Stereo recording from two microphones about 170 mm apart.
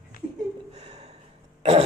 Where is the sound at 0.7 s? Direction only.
40° right (ahead or behind).